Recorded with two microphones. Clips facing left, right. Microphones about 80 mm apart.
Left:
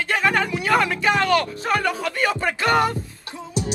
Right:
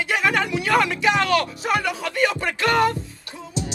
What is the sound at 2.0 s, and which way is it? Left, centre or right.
Music, centre.